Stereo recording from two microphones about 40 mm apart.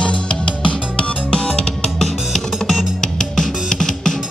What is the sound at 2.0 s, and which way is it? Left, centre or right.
Music, centre.